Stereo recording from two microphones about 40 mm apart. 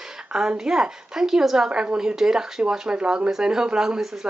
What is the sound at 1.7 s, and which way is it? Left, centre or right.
Speech, right.